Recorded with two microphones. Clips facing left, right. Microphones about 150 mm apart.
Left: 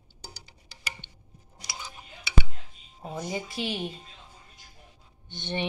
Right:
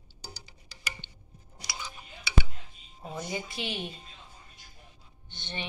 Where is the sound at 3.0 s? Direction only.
40° left (ahead or behind).